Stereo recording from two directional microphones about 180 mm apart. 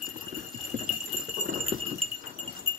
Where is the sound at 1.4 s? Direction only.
45° right (ahead or behind).